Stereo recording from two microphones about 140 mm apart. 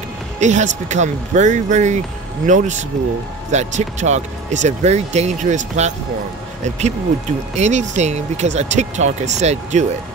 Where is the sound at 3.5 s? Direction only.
55° right (ahead or behind).